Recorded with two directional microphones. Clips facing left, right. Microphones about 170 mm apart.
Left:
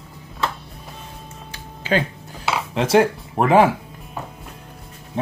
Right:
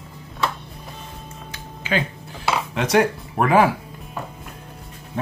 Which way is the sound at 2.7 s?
30° left (ahead or behind).